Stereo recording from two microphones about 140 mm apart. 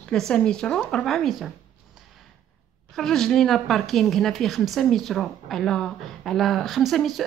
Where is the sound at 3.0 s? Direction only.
5° left (ahead or behind).